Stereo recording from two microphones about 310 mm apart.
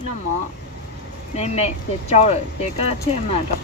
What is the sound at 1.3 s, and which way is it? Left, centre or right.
Speech, left.